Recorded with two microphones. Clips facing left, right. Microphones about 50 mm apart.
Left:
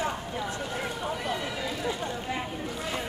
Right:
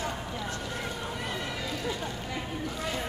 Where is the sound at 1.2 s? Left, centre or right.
Centre.